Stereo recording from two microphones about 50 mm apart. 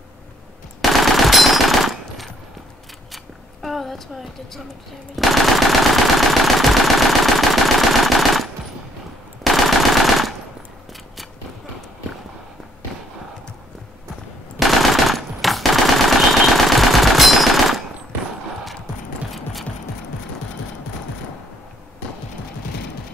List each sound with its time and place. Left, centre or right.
0.8 s machine gun: centre
3.6 s a sound: centre
5.1 s machine gun: centre
14.6 s machine gun: centre